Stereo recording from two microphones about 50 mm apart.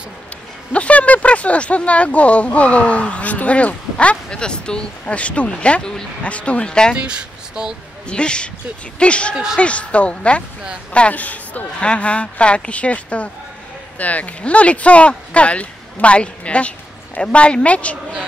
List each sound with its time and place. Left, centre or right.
0.7 s speech: left
6.2 s speech: left
7.0 s speech: centre
8.1 s speech: centre
9.3 s speech: centre
9.6 s speech: left